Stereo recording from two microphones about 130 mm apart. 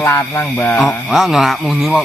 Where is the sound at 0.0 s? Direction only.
20° left (ahead or behind).